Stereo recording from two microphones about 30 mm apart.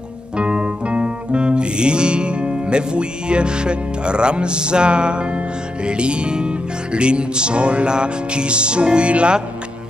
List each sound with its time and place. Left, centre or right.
0.4 s music: right